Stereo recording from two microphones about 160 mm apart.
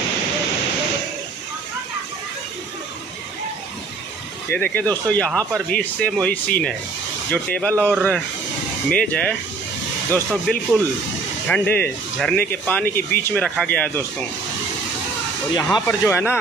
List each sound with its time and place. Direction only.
4.5 s speech: 10° left (ahead or behind)
10.3 s speech: centre (ahead or behind)
15.5 s speech: 20° left (ahead or behind)